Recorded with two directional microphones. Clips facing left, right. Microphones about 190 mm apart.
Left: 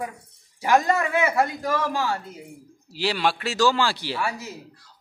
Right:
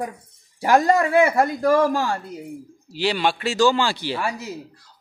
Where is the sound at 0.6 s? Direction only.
40° right (ahead or behind).